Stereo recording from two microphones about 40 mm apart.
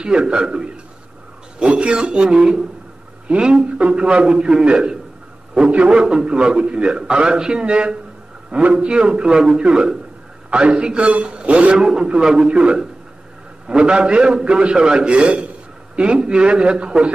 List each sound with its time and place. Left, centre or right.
0.0 s a man's voice: right
1.7 s a man's voice: right
11.8 s a man's voice: centre